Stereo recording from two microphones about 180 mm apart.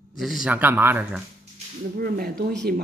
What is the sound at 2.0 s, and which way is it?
Speech, 55° right (ahead or behind).